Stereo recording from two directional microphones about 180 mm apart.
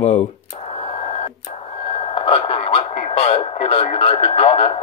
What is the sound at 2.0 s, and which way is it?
Radio, 35° left (ahead or behind).